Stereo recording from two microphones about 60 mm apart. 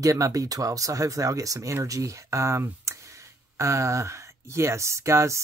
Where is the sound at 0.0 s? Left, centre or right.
Right.